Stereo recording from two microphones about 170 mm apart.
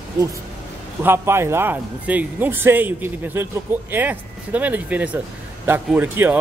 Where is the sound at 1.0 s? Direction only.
15° right (ahead or behind).